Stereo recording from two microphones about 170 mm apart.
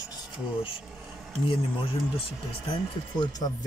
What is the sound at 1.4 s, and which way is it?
Speech, 30° left (ahead or behind).